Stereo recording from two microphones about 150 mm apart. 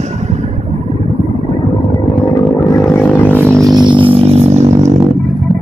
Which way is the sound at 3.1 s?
10° left (ahead or behind).